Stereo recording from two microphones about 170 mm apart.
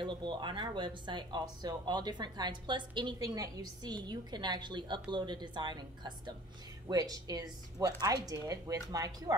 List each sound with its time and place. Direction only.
0.0 s speech: 25° right (ahead or behind)